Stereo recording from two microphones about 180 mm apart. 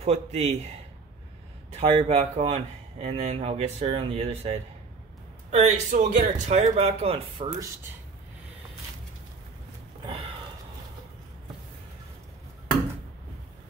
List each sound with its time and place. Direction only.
0.0 s speech: 35° right (ahead or behind)
1.8 s speech: 35° right (ahead or behind)